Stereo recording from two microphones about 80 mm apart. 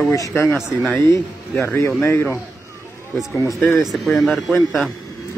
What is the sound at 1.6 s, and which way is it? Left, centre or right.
Speech, left.